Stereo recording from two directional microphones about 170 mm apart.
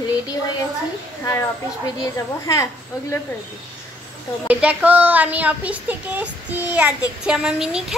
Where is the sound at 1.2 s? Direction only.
15° left (ahead or behind).